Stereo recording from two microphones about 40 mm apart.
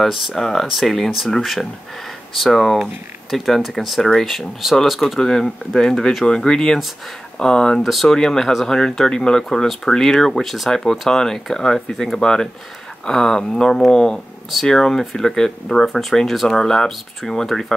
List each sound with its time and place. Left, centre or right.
0.4 s speech: centre
5.2 s speech: centre
7.8 s speech: centre
8.1 s speech: centre